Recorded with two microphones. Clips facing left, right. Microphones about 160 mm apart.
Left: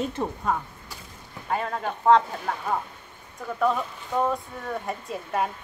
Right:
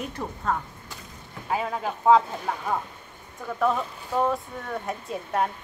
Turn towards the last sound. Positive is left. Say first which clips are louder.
# right 1 dB
turn(degrees=0)  # may be behind; listen again after turning